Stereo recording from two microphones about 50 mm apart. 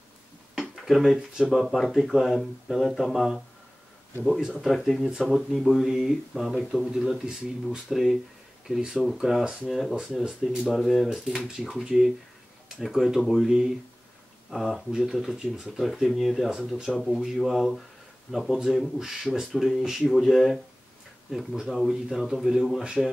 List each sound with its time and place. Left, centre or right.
0.7 s speech: centre
4.4 s speech: centre
4.6 s speech: centre
11.4 s speech: centre
13.5 s speech: centre
14.5 s speech: centre
14.9 s speech: centre